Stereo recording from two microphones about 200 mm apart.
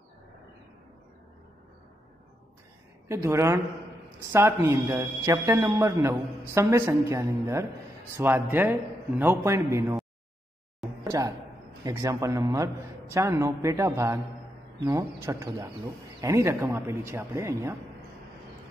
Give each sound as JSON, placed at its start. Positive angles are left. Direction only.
{"t": 3.1, "sound": "a man's voice", "side_deg": -15}
{"t": 11.1, "sound": "a man's voice", "side_deg": -15}